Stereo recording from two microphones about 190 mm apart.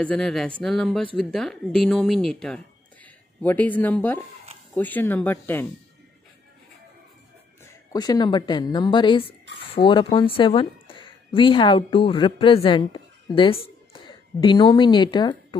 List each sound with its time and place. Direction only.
0.0 s a woman's voice: 5° left (ahead or behind)
7.6 s a woman's voice: 20° left (ahead or behind)